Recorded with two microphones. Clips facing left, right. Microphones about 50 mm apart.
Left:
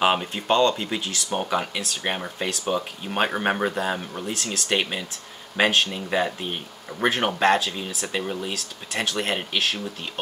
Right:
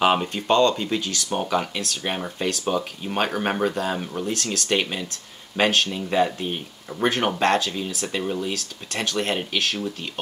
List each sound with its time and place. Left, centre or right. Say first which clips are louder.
0.0 s speech: right 2 dB; centre
8.2 s speech: right 3 dB; centre